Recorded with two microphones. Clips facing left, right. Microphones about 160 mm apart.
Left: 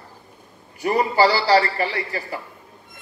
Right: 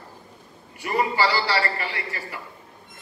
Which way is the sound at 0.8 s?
35° left (ahead or behind).